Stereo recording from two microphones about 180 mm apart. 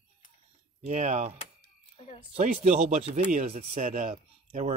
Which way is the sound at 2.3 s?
40° right (ahead or behind).